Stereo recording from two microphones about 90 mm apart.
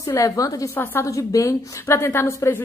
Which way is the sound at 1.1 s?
35° left (ahead or behind).